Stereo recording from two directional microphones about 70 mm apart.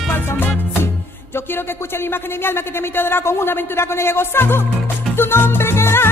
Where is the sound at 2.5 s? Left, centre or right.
Left.